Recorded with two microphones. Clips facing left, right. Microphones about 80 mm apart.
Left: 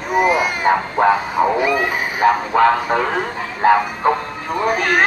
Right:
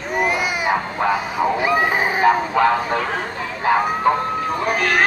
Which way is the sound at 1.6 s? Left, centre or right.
Right.